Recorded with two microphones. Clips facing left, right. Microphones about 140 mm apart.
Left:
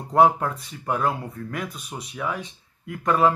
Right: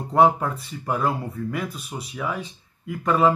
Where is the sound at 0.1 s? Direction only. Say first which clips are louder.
Even; centre (ahead or behind).